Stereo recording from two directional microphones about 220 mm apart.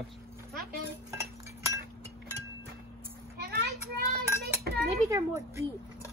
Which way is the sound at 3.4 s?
45° right (ahead or behind).